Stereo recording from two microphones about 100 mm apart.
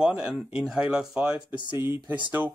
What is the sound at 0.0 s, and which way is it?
Speech, 10° right (ahead or behind).